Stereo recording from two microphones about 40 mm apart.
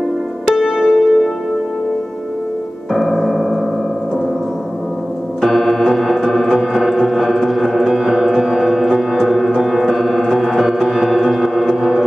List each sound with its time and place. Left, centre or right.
0.5 s music: centre
2.9 s piano: centre
5.4 s organ: centre
6.6 s music: centre